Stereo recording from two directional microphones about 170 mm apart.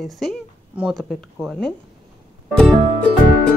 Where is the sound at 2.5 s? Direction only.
5° left (ahead or behind).